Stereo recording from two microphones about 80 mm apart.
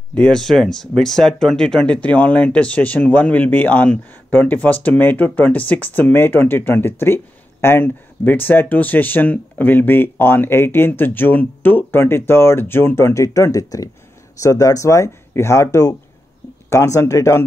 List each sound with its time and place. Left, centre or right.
0.1 s speech: centre; by 17.4 s left